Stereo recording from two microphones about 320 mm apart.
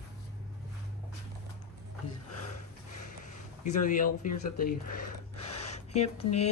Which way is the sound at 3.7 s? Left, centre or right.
Left.